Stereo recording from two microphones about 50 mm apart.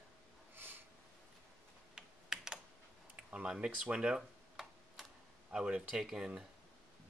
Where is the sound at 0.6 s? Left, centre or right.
Right.